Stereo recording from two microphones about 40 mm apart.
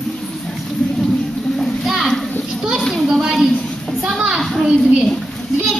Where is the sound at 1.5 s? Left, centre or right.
Centre.